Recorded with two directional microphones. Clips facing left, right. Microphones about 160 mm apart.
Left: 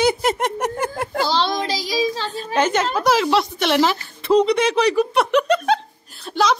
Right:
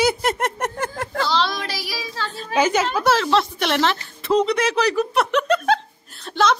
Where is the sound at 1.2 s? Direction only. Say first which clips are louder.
Left 2 dB; 25° left (ahead or behind).